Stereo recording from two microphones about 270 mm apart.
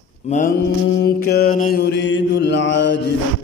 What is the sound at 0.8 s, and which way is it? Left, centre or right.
Mantra, left.